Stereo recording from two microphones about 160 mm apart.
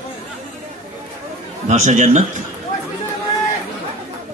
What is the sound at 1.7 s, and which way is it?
Speech, 50° right (ahead or behind).